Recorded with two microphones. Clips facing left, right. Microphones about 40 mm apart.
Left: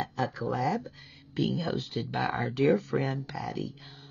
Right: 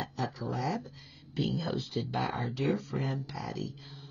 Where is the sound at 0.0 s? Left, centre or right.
Left.